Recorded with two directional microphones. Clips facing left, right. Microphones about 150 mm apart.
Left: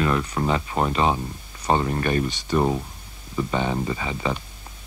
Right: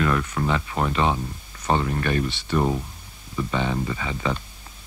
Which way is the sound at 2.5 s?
15° left (ahead or behind).